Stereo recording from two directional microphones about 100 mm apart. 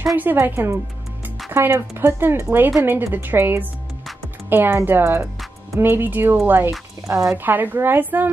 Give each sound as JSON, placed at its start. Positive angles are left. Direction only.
{"t": 0.0, "sound": "speech", "side_deg": -20}
{"t": 7.1, "sound": "speech", "side_deg": -30}
{"t": 7.3, "sound": "speech", "side_deg": -20}